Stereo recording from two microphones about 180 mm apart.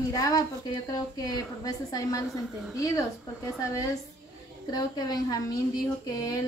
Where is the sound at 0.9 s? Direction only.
20° left (ahead or behind).